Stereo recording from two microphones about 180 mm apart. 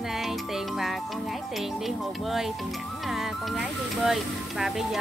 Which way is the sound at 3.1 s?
Centre (ahead or behind).